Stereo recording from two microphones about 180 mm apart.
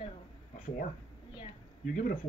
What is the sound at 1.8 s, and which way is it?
Speech, 45° left (ahead or behind).